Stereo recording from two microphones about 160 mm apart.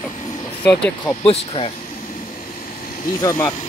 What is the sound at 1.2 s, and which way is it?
Speech, 35° left (ahead or behind).